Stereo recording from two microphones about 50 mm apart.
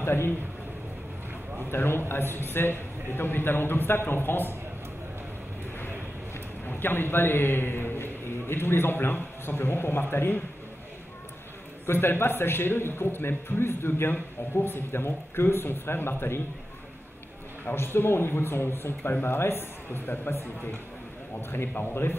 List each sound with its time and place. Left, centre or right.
0.0 s a man's voice: left
1.7 s a man's voice: left
6.6 s a man's voice: left
11.8 s a man's voice: left
17.7 s a man's voice: left